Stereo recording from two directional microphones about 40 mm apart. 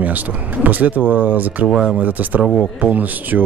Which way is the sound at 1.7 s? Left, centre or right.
Centre.